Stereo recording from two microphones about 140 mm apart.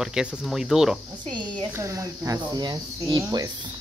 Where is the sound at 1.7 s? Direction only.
20° right (ahead or behind).